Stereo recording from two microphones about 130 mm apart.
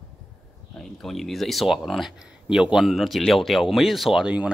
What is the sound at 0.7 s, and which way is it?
Speech, 5° left (ahead or behind).